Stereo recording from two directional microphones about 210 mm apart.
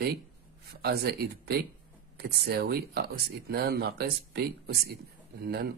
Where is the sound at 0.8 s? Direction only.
50° right (ahead or behind).